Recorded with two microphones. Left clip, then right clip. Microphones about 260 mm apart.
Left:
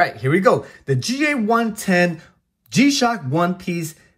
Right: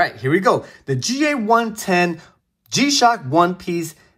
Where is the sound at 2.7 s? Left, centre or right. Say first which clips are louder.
Right 2 dB; centre.